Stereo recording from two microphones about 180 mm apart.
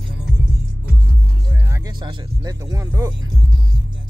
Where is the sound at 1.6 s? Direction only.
20° right (ahead or behind).